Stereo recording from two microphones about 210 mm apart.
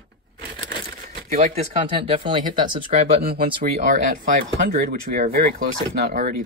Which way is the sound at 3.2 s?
45° right (ahead or behind).